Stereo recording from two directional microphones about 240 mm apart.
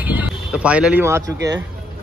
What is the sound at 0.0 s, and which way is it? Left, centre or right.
Speech, centre.